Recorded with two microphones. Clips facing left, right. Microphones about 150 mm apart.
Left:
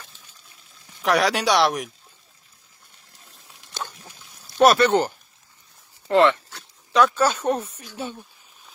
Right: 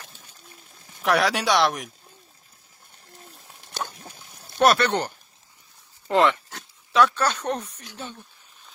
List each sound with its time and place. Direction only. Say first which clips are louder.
0.0 s a sound: right 1 dB; 50° right (ahead or behind)
1.0 s speech: left 1 dB; centre (ahead or behind)
3.6 s dog: right 2 dB; 50° right (ahead or behind)
4.6 s speech: left 4 dB; centre (ahead or behind)
6.0 s speech: left 3 dB; 15° right (ahead or behind)
6.9 s speech: left 2 dB; centre (ahead or behind)